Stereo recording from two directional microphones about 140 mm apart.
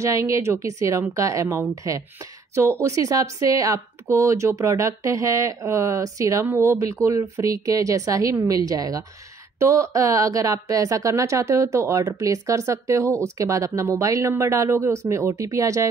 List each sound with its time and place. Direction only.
0.0 s speech: 20° right (ahead or behind)